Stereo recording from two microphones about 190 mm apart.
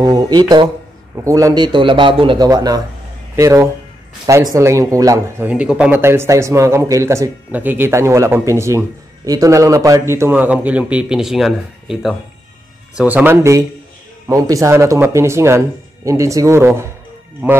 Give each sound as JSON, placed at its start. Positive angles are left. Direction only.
{"t": 0.0, "sound": "a man's voice", "side_deg": -20}